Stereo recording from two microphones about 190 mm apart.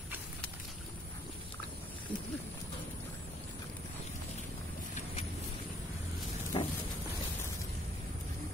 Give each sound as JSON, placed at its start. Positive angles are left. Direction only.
{"t": 6.5, "sound": "vehicle", "side_deg": 25}